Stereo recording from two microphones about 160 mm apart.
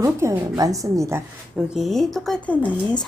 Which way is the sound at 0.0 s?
20° right (ahead or behind).